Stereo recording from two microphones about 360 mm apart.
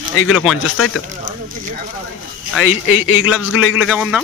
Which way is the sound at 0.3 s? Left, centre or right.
Centre.